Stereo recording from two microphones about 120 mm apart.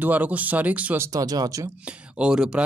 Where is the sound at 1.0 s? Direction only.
30° right (ahead or behind).